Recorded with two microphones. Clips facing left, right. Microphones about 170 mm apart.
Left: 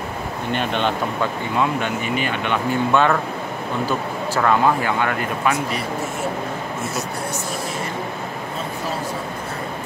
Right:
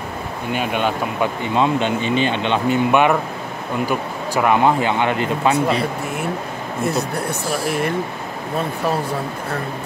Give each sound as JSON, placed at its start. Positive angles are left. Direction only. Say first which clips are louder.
{"t": 0.5, "sound": "speech", "louder": "right 1 dB", "side_deg": -10}
{"t": 1.5, "sound": "speech", "louder": "right 5 dB", "side_deg": -20}